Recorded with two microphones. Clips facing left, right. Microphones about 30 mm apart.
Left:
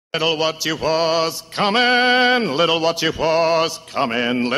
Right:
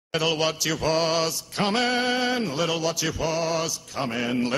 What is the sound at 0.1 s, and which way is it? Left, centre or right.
Mantra, left.